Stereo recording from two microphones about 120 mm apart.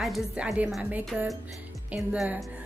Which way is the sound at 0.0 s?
Centre (ahead or behind).